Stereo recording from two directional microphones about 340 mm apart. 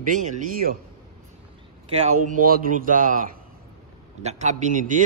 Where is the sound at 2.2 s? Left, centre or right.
Right.